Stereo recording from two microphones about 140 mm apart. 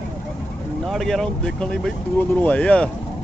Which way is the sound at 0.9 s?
Centre (ahead or behind).